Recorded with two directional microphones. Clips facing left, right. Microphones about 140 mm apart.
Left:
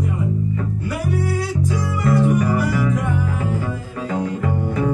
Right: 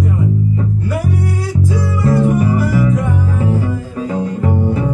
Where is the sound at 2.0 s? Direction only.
35° right (ahead or behind).